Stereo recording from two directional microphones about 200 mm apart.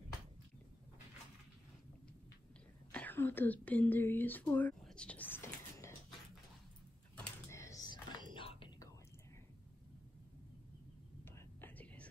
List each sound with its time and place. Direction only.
2.9 s speech: 10° left (ahead or behind)
7.2 s whispering: 15° left (ahead or behind)
11.2 s whispering: 10° left (ahead or behind)